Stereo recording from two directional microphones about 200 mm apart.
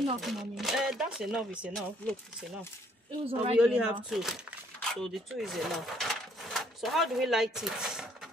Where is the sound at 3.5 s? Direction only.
5° right (ahead or behind).